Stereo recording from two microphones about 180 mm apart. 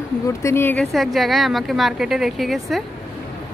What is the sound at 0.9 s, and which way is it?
A woman's voice, centre (ahead or behind).